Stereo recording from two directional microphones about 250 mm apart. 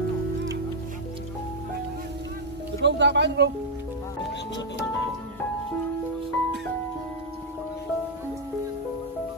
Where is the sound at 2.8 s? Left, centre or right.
Right.